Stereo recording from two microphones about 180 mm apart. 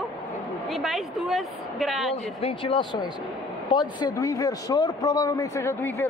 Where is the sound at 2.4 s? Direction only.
30° left (ahead or behind).